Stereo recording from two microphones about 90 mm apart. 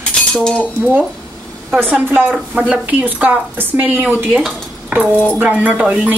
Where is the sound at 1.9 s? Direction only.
20° right (ahead or behind).